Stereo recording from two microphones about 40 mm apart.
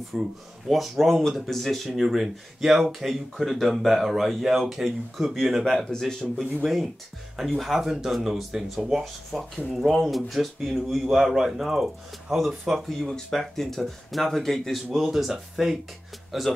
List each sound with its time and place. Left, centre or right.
0.1 s speech: centre
0.7 s speech: centre
5.9 s speech: centre
7.3 s speech: centre
14.9 s speech: centre